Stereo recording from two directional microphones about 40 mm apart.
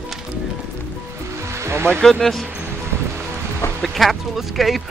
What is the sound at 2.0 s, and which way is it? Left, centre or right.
Speech, centre.